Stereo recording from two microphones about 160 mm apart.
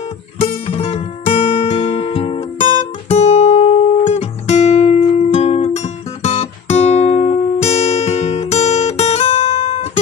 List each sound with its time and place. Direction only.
0.4 s music: 40° left (ahead or behind)
3.1 s guitar: 45° left (ahead or behind)